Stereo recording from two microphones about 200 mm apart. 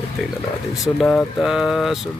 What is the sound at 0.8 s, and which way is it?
Speech, centre (ahead or behind).